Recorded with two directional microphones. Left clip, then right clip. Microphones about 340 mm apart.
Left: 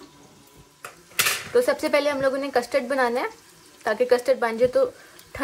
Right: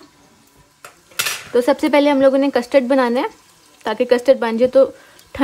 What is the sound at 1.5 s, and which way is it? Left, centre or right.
A woman's voice, right.